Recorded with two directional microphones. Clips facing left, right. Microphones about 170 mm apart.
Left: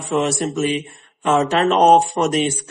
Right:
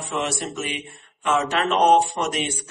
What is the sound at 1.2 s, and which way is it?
Speech, 40° left (ahead or behind).